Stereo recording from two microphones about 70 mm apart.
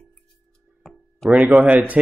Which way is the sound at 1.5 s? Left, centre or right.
Centre.